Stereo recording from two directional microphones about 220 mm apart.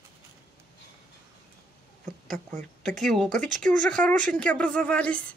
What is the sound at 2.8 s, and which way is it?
Speech, centre (ahead or behind).